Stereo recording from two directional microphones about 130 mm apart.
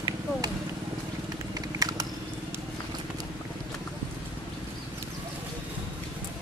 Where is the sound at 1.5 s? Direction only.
30° right (ahead or behind).